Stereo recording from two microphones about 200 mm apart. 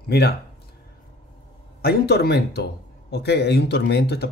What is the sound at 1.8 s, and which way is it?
A man's voice, 50° left (ahead or behind).